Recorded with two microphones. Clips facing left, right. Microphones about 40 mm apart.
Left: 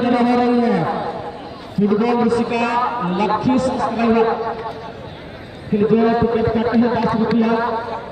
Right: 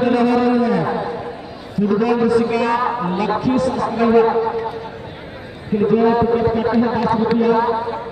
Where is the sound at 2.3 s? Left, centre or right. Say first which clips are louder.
Right 2 dB; left.